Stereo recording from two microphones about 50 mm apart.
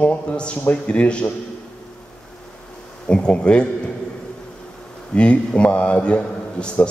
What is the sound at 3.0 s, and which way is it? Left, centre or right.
Speech, centre.